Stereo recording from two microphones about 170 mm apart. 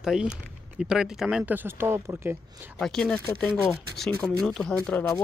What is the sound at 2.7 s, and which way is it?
Speech, 5° left (ahead or behind).